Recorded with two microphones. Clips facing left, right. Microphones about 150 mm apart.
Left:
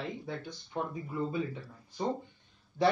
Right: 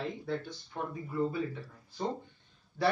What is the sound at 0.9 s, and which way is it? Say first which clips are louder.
Speech: right 2 dB; 20° left (ahead or behind).